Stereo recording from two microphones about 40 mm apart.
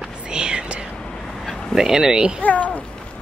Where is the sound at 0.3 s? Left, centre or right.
Right.